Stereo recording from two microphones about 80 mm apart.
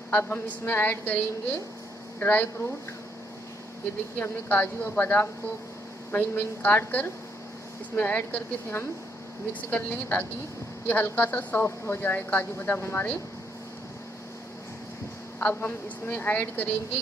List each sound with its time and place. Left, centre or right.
0.1 s speech: left
4.2 s speech: centre
15.4 s speech: left